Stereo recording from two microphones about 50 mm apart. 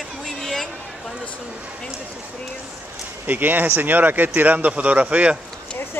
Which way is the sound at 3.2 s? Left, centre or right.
Right.